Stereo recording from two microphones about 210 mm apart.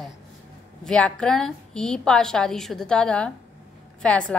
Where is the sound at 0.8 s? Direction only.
5° left (ahead or behind).